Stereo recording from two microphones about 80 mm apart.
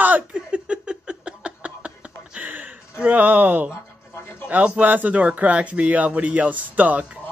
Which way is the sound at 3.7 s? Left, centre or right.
Left.